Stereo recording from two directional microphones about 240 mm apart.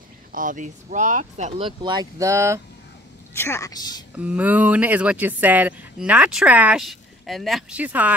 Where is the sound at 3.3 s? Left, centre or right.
Centre.